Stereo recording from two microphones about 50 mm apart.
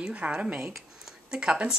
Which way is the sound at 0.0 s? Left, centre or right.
Centre.